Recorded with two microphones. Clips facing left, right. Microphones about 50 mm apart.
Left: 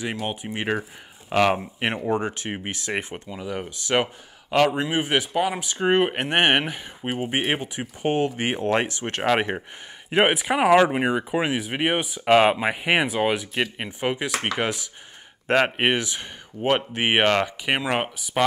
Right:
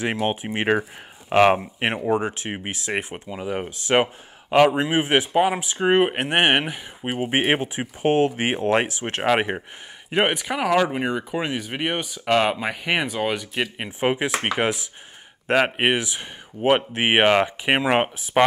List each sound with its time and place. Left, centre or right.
0.3 s speech: right; by 3.2 s centre
3.3 s speech: right; by 7.2 s centre
7.2 s speech: right
7.8 s speech: centre
10.1 s speech: centre
10.5 s speech: left; by 13.8 s centre
13.8 s speech: centre
15.4 s speech: centre; by 18.4 s right